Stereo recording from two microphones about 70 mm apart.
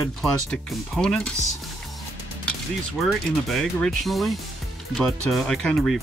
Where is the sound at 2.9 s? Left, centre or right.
Centre.